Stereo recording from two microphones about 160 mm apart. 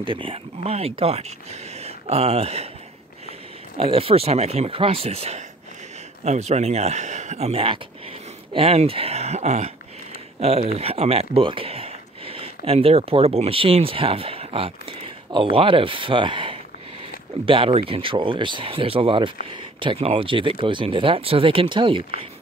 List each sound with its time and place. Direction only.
0.0 s speech: 35° right (ahead or behind)
3.7 s speech: 35° right (ahead or behind)